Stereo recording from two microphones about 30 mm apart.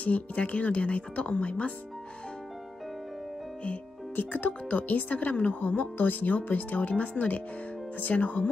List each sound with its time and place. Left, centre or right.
0.0 s a woman's voice: left
4.1 s a woman's voice: left